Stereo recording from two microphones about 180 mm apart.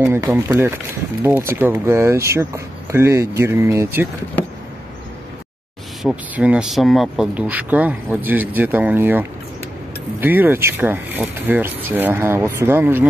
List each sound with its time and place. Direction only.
0.2 s speech: 15° right (ahead or behind)
6.0 s speech: 5° right (ahead or behind)
10.2 s speech: 10° right (ahead or behind)